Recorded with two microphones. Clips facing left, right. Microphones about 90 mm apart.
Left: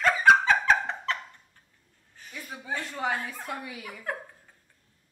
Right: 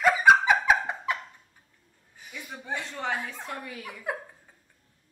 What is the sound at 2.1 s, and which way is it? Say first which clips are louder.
Chuckle: even; 10° right (ahead or behind).